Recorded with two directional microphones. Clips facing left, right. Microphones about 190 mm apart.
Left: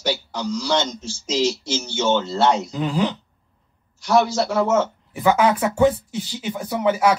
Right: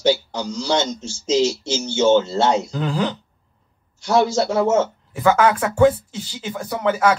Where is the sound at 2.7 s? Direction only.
15° left (ahead or behind).